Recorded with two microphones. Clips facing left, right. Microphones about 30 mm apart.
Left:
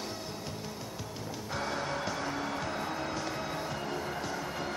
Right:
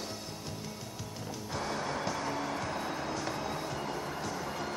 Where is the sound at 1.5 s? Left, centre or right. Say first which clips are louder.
Left 1 dB; centre.